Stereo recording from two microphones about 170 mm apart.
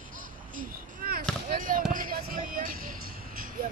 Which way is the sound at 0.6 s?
60° right (ahead or behind).